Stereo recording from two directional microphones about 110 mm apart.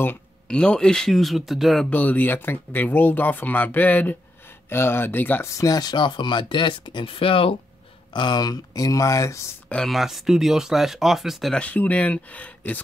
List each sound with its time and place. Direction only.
0.5 s speech: 10° left (ahead or behind)
1.9 s speech: 15° left (ahead or behind)
5.6 s speech: 35° left (ahead or behind); by 7.5 s 55° left (ahead or behind)
8.1 s speech: 45° left (ahead or behind)
9.7 s speech: 5° left (ahead or behind)
11.6 s speech: 15° left (ahead or behind)